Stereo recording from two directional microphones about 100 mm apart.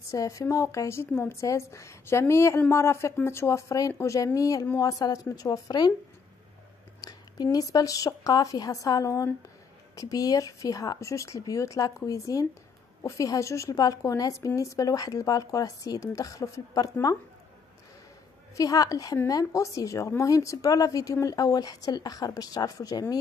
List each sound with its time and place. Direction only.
0.1 s a woman's voice: 35° left (ahead or behind)
7.0 s a sound: 40° left (ahead or behind)
7.5 s a woman's voice: 35° left (ahead or behind)
18.6 s a woman's voice: 35° left (ahead or behind)